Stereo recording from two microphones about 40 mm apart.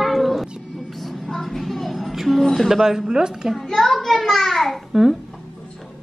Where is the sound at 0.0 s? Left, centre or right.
Centre.